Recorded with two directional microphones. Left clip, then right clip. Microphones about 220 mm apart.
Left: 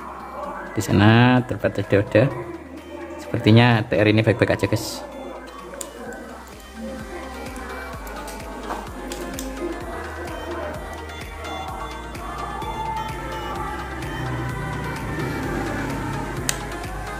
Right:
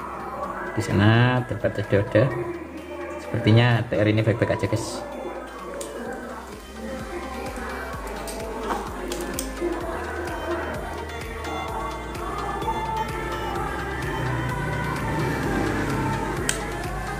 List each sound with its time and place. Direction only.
0.7 s speech: 30° left (ahead or behind)
3.4 s speech: 30° left (ahead or behind)
12.4 s music: centre (ahead or behind)